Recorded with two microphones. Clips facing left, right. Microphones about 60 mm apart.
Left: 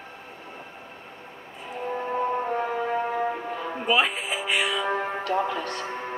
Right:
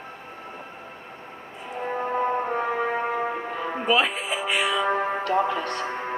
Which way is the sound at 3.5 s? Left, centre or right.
Right.